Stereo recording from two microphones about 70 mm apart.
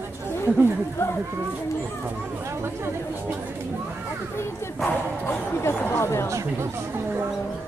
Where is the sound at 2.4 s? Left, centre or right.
Right.